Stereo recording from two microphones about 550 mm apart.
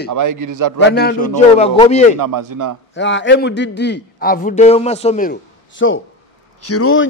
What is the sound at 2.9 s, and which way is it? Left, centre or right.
A man's voice, centre.